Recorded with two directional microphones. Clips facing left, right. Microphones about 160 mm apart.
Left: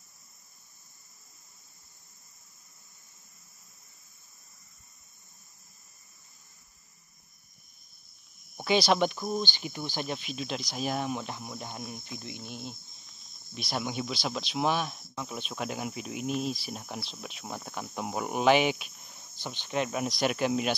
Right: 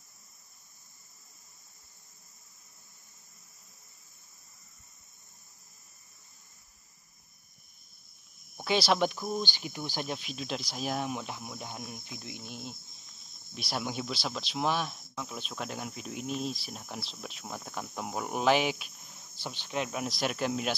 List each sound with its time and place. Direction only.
8.5 s speech: centre (ahead or behind)